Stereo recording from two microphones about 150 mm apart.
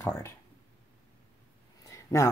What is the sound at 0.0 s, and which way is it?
Speech, 15° left (ahead or behind).